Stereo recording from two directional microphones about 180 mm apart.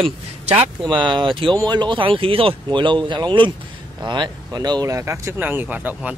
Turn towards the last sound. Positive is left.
turn(degrees=-10)  # may be behind; listen again after turning